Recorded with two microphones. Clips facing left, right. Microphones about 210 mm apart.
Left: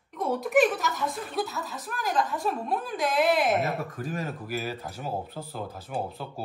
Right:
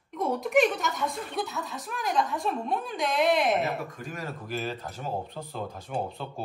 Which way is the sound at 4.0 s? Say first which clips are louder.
Left 5 dB; 35° left (ahead or behind).